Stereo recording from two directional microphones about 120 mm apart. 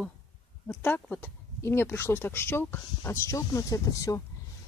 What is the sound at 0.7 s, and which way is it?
Speech, 15° left (ahead or behind).